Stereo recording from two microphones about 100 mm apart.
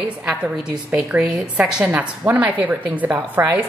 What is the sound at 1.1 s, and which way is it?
A woman's voice, 10° right (ahead or behind).